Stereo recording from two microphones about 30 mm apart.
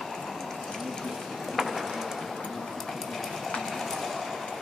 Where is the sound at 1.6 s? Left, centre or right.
Centre.